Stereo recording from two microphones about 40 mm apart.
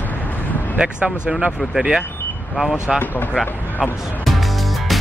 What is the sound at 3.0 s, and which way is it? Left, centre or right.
Speech, left.